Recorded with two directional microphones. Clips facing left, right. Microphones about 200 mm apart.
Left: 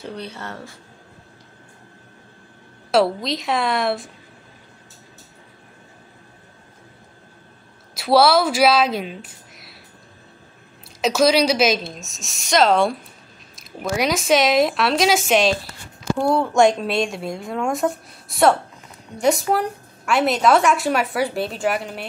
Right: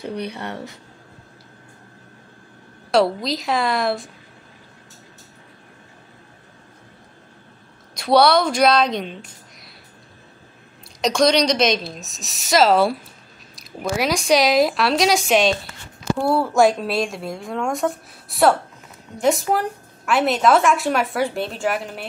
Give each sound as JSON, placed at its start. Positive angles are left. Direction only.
{"t": 0.0, "sound": "speech", "side_deg": -15}
{"t": 2.9, "sound": "a woman's voice", "side_deg": 0}
{"t": 7.9, "sound": "speech", "side_deg": 5}
{"t": 11.0, "sound": "a woman's voice", "side_deg": 5}